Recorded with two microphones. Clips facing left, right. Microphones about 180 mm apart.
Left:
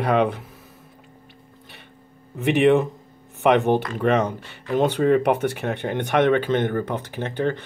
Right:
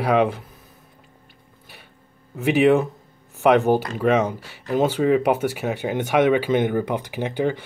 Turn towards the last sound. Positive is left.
turn(degrees=-10)  # may be behind; listen again after turning